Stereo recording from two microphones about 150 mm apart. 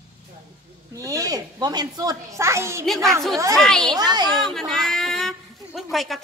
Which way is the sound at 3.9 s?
25° right (ahead or behind).